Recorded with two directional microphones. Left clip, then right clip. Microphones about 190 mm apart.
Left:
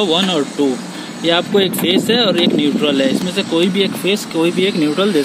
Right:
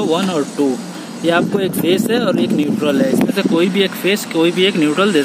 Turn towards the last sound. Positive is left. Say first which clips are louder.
# right 1 dB
turn(degrees=0)  # may be behind; listen again after turning